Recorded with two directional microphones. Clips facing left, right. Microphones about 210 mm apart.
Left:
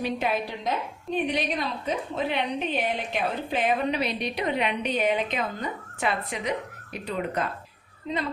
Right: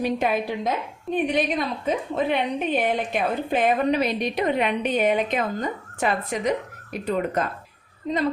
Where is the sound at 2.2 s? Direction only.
50° right (ahead or behind).